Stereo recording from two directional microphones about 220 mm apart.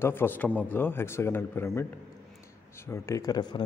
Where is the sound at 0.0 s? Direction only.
10° left (ahead or behind).